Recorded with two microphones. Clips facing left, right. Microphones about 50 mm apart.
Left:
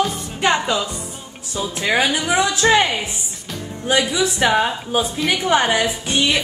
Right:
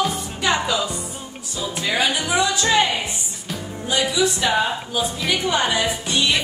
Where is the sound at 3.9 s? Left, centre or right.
Left.